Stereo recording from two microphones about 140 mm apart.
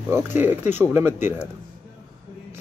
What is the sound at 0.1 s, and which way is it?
Speech, 15° right (ahead or behind).